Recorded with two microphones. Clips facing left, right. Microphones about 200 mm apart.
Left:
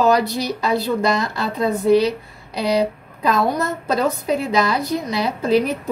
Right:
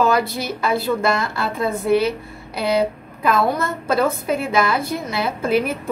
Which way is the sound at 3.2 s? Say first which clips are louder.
Even; 20° left (ahead or behind).